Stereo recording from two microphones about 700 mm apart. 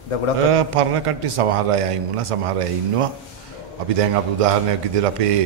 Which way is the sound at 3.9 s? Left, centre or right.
Right.